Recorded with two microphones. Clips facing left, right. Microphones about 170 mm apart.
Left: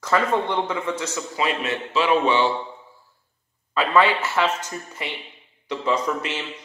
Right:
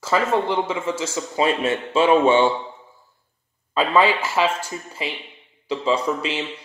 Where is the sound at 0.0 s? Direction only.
5° right (ahead or behind).